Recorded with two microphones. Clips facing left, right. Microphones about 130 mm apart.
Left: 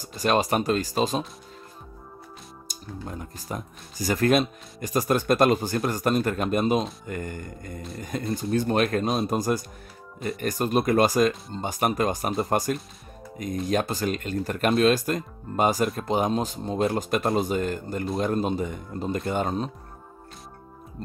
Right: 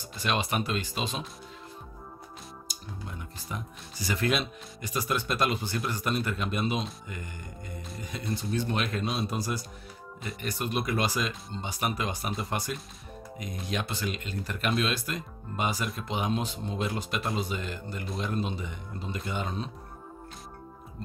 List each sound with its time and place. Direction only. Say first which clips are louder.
0.0 s speech: left 7 dB; 40° left (ahead or behind)
2.7 s speech: left 8 dB; 40° left (ahead or behind)